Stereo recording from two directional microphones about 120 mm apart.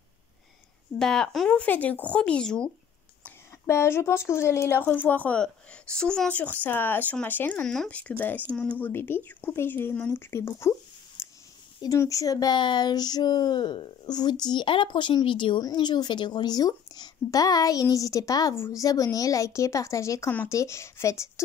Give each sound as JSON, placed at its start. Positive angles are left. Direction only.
{"t": 0.9, "sound": "speech", "side_deg": 5}
{"t": 3.6, "sound": "speech", "side_deg": 20}
{"t": 7.6, "sound": "a woman's voice", "side_deg": 5}